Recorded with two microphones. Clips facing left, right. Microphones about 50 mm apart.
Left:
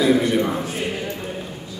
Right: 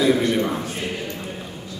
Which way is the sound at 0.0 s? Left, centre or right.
Centre.